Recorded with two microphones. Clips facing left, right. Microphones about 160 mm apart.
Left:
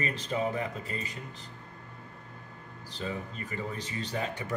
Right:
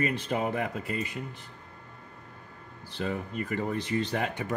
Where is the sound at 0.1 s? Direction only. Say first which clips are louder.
Right 2 dB; 60° right (ahead or behind).